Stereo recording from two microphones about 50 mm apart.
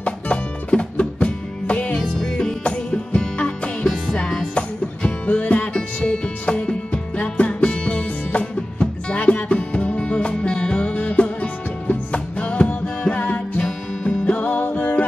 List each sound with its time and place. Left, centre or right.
0.0 s music: left
2.0 s music: centre; by 5.7 s left
6.0 s music: centre
14.4 s music: left